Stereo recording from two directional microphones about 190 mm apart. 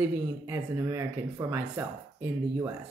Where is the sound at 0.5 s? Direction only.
15° right (ahead or behind).